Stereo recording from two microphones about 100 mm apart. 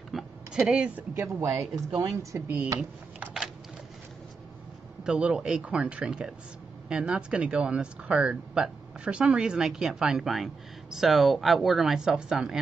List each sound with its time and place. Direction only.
0.1 s a sound: 5° right (ahead or behind)
1.1 s speech: 30° right (ahead or behind)
2.4 s speech: 15° right (ahead or behind)
2.8 s typing: 10° right (ahead or behind)
5.0 s speech: 10° right (ahead or behind)